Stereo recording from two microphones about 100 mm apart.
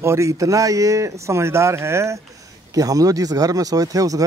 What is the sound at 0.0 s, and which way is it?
Speech, 30° right (ahead or behind).